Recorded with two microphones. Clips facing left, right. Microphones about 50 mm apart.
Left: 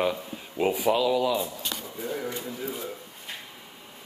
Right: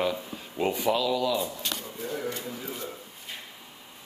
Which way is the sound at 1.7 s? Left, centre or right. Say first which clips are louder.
Left 1 dB; centre.